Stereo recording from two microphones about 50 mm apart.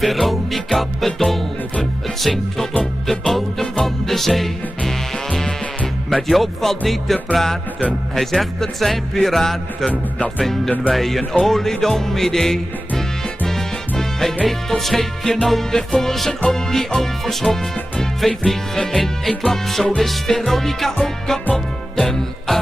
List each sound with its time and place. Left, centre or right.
0.0 s music: centre
6.2 s music: centre